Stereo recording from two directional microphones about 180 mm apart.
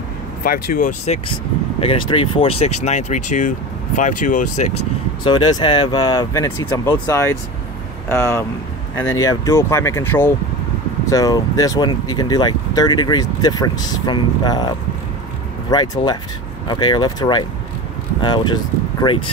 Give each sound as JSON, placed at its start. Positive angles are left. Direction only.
{"t": 0.4, "sound": "speech", "side_deg": 55}
{"t": 1.8, "sound": "speech", "side_deg": 30}
{"t": 5.2, "sound": "speech", "side_deg": 25}
{"t": 15.7, "sound": "speech", "side_deg": 25}